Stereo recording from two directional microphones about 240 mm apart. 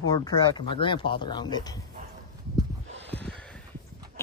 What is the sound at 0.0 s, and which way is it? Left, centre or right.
Speech, centre.